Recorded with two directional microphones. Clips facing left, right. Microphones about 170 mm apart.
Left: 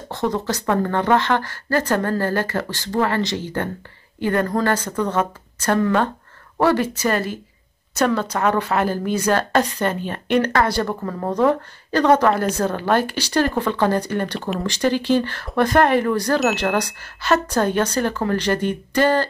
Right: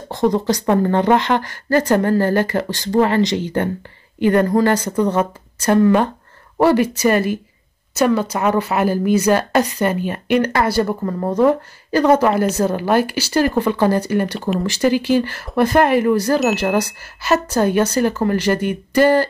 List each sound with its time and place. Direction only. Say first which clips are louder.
0.1 s a woman's voice: right 6 dB; 15° right (ahead or behind)